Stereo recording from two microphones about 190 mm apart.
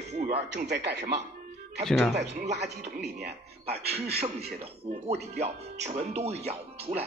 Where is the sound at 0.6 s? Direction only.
60° right (ahead or behind).